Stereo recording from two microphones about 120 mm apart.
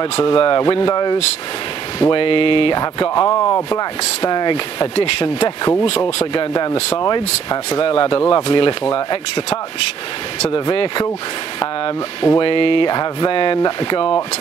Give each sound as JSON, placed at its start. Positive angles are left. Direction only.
{"t": 0.0, "sound": "speech", "side_deg": 45}
{"t": 2.8, "sound": "speech", "side_deg": 35}
{"t": 3.3, "sound": "speech", "side_deg": 25}
{"t": 4.2, "sound": "speech", "side_deg": 40}
{"t": 4.9, "sound": "speech", "side_deg": 60}
{"t": 5.4, "sound": "speech", "side_deg": 35}
{"t": 5.9, "sound": "speech", "side_deg": 55}
{"t": 6.5, "sound": "speech", "side_deg": 35}
{"t": 10.5, "sound": "speech", "side_deg": 45}
{"t": 12.4, "sound": "speech", "side_deg": 50}
{"t": 12.9, "sound": "speech", "side_deg": 35}